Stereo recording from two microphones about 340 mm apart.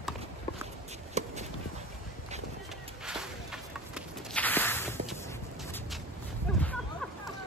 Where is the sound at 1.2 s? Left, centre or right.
Centre.